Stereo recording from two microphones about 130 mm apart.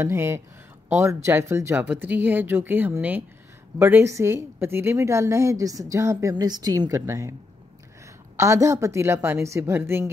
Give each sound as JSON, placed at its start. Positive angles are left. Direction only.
{"t": 0.0, "sound": "a woman's voice", "side_deg": -20}
{"t": 8.4, "sound": "a woman's voice", "side_deg": -20}